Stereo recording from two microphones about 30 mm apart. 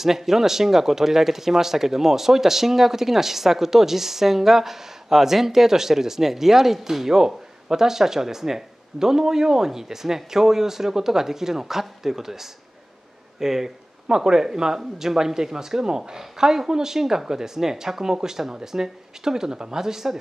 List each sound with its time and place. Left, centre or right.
0.0 s speech: centre